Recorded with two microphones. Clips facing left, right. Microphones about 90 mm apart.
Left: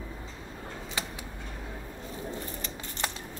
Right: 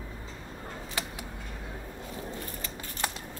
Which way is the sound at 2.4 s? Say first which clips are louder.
Left 1 dB; 25° left (ahead or behind).